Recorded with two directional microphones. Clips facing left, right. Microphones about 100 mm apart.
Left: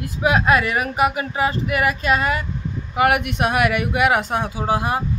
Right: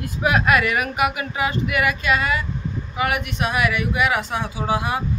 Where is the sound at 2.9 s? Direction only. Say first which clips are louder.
Left 6 dB; 60° left (ahead or behind).